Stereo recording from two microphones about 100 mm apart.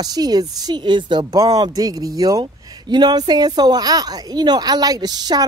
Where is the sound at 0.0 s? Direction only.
40° right (ahead or behind).